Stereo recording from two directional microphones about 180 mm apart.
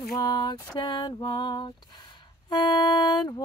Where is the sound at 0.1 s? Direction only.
25° left (ahead or behind).